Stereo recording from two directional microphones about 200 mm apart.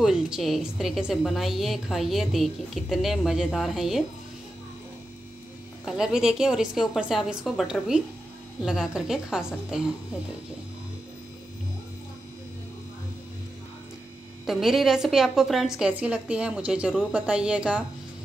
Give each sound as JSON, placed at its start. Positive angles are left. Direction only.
{"t": 0.0, "sound": "a woman's voice", "side_deg": -5}
{"t": 5.9, "sound": "a woman's voice", "side_deg": -5}
{"t": 14.4, "sound": "a woman's voice", "side_deg": 0}